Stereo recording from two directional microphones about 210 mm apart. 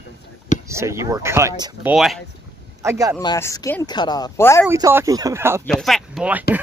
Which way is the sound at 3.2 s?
15° left (ahead or behind).